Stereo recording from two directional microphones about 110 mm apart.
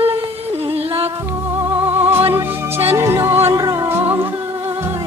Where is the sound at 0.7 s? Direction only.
65° right (ahead or behind).